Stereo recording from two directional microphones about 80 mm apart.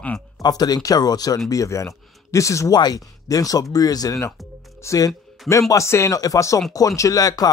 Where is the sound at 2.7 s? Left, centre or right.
Left.